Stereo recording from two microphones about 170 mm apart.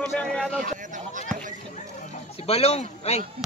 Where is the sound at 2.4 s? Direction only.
35° left (ahead or behind).